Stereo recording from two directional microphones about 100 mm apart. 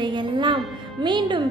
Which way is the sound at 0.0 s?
50° right (ahead or behind).